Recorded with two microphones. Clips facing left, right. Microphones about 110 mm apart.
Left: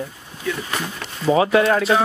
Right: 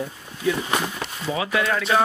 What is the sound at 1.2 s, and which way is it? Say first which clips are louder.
Speech: left 9 dB; 35° left (ahead or behind).